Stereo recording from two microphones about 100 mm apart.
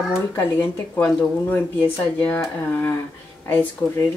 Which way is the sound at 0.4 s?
20° left (ahead or behind).